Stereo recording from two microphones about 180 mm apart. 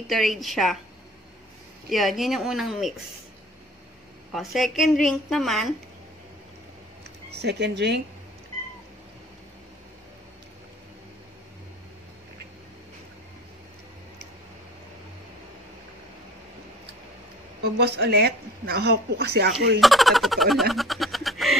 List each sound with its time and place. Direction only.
0.1 s speech: centre (ahead or behind)
1.9 s speech: centre (ahead or behind)
4.3 s speech: centre (ahead or behind)
7.4 s speech: 70° right (ahead or behind)
17.7 s speech: 65° right (ahead or behind)
19.8 s speech: centre (ahead or behind)
20.7 s a sound: centre (ahead or behind)